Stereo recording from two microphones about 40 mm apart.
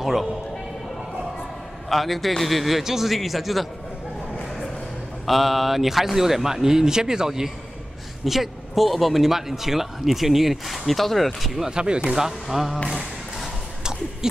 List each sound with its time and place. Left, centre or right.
0.0 s speech: centre
1.9 s speech: centre
5.2 s speech: centre
8.3 s speech: centre
11.7 s speech: right
12.1 s speech: centre
14.2 s owl: centre